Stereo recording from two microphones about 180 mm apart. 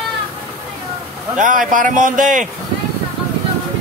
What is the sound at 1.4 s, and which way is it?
Speech, 45° right (ahead or behind).